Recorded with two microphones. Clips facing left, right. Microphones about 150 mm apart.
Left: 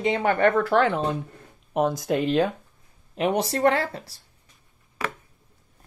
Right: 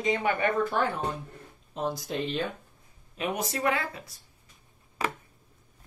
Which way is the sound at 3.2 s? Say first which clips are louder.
Left 7 dB; 30° left (ahead or behind).